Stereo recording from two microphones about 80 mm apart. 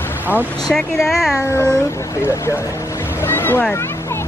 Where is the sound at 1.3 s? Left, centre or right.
Left.